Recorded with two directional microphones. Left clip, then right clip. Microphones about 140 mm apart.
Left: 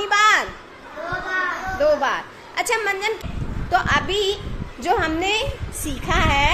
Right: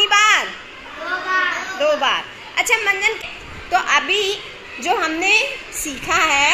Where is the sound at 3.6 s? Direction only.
15° left (ahead or behind).